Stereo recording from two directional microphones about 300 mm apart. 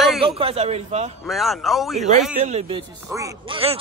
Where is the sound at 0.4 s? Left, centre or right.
Centre.